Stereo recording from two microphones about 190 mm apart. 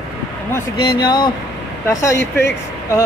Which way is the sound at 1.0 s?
25° left (ahead or behind).